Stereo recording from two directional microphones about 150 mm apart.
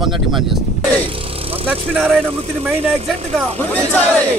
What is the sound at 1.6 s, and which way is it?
Speech, 5° right (ahead or behind).